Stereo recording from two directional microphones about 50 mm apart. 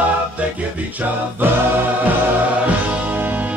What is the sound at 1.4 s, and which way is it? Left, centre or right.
Music, right.